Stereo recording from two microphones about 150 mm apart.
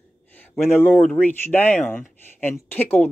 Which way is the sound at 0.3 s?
15° left (ahead or behind).